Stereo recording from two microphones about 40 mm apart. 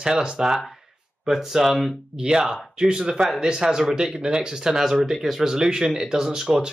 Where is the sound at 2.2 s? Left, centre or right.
Right.